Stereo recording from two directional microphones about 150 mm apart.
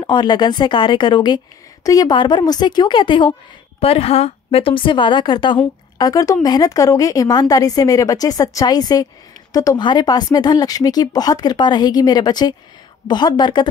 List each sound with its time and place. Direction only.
0.0 s a woman's voice: 30° left (ahead or behind)